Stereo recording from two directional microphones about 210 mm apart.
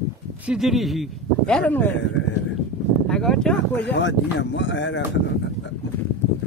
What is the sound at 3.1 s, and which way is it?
Speech, 5° left (ahead or behind).